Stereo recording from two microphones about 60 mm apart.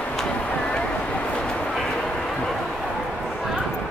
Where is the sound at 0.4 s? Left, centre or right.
Centre.